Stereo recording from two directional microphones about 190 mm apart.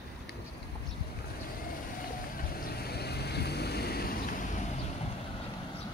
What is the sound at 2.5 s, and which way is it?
Vehicle, 55° left (ahead or behind).